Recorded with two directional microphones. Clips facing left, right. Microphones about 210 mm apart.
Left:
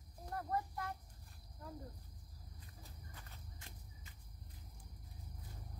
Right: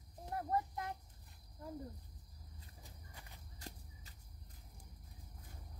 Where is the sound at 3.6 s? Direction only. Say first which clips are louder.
Right 5 dB; 40° right (ahead or behind).